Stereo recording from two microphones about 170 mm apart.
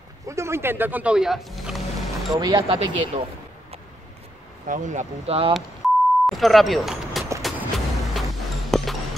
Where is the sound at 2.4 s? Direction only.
25° right (ahead or behind).